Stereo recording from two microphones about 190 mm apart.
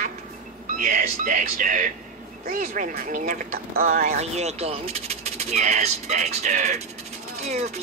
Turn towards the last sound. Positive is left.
turn(degrees=-35)  # may be behind; listen again after turning